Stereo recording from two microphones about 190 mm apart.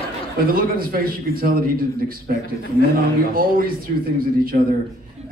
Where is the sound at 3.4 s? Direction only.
50° right (ahead or behind).